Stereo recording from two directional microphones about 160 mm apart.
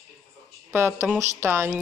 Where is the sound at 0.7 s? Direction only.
15° right (ahead or behind).